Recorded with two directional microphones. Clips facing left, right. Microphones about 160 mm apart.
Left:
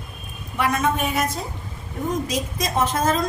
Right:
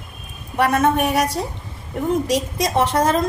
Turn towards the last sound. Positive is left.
turn(degrees=-65)  # may be behind; listen again after turning